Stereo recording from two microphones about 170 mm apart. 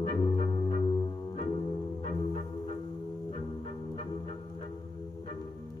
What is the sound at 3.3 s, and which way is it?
Music, 35° left (ahead or behind).